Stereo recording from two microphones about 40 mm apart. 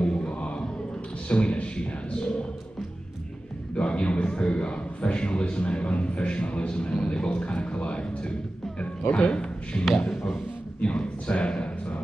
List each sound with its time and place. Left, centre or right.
0.0 s music: left
1.3 s a man's voice: left
3.7 s a man's voice: left
9.3 s a man's voice: left
10.1 s a sound: centre
10.8 s a man's voice: left